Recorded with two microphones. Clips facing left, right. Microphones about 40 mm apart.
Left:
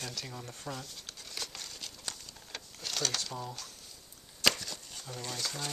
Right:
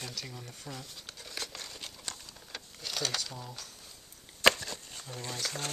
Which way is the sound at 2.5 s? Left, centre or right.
Centre.